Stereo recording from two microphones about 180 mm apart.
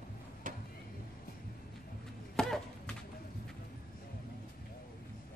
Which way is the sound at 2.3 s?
Centre (ahead or behind).